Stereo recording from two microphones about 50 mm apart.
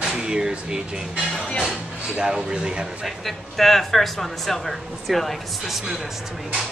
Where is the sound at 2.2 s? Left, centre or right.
Centre.